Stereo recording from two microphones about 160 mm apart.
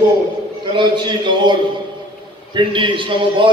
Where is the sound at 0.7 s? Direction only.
30° right (ahead or behind).